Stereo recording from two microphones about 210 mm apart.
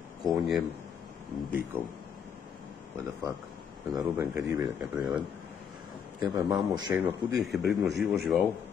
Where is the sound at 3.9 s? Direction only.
10° right (ahead or behind).